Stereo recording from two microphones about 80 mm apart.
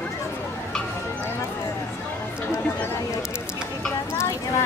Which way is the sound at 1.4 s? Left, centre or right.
Left.